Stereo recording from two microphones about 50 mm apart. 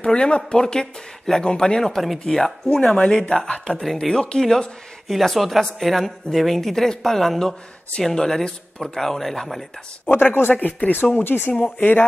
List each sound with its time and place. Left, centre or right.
0.0 s speech: left
2.7 s speech: left
3.1 s speech: centre
3.8 s speech: centre
4.1 s speech: centre
5.1 s speech: centre
10.0 s speech: left
10.5 s speech: left